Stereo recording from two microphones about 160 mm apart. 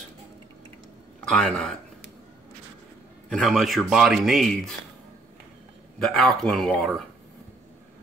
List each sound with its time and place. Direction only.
1.2 s speech: 5° left (ahead or behind)
3.3 s speech: centre (ahead or behind)
5.9 s speech: 5° left (ahead or behind)